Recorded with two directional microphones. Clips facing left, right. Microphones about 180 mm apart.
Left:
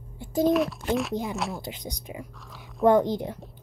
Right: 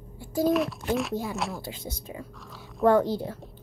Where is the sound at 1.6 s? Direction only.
20° left (ahead or behind).